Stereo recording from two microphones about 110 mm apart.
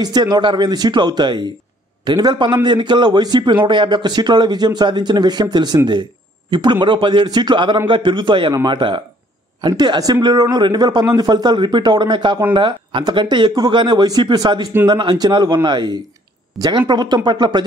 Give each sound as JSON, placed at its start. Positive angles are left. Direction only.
{"t": 0.0, "sound": "speech", "side_deg": -40}